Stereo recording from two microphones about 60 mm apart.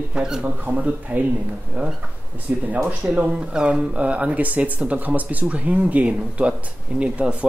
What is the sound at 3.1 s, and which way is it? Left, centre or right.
Speech, centre.